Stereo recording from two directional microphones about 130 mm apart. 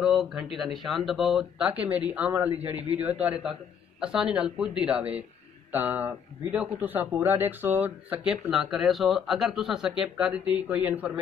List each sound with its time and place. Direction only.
0.0 s speech: 5° right (ahead or behind)
1.9 s a man's voice: 10° right (ahead or behind)